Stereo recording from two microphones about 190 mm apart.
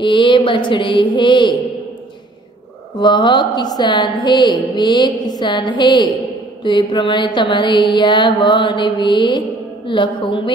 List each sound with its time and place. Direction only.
0.0 s a woman's voice: 25° left (ahead or behind)
3.0 s a woman's voice: 25° left (ahead or behind)